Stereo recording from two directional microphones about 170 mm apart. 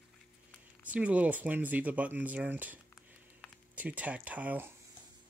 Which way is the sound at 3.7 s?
10° right (ahead or behind).